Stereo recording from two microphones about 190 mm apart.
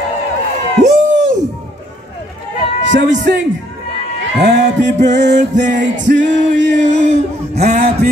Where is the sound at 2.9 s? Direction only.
70° right (ahead or behind).